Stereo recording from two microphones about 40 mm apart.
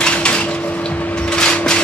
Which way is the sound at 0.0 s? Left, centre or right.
Left.